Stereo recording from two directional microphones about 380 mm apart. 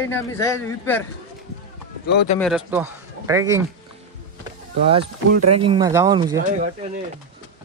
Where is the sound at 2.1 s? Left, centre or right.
Left.